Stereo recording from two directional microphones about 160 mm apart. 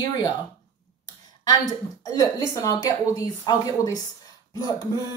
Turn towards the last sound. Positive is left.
turn(degrees=25)  # may be behind; listen again after turning